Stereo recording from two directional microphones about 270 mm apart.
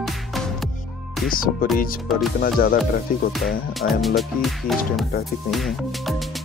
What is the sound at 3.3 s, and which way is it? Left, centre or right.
Speech, centre.